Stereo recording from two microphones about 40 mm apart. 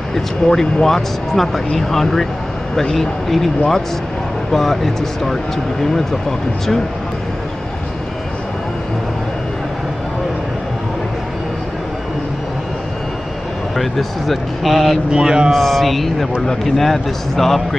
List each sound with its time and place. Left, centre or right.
0.1 s speech: centre
13.7 s speech: centre
15.0 s speech: right
15.5 s speech: centre